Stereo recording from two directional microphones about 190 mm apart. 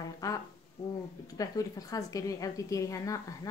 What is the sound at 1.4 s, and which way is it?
A woman's voice, 20° left (ahead or behind).